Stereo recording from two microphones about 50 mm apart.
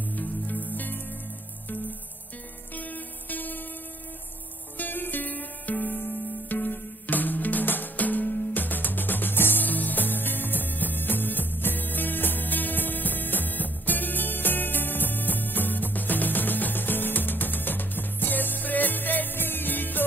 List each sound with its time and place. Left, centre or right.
0.1 s music: left
2.7 s music: left
4.7 s music: left